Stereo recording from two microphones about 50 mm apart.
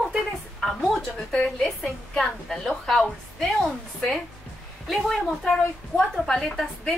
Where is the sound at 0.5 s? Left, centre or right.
Centre.